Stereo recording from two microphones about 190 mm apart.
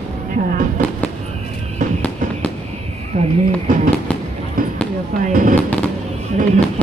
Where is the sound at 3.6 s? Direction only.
45° right (ahead or behind).